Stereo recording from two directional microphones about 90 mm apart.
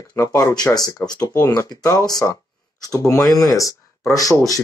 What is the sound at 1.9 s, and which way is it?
Speech, 45° left (ahead or behind).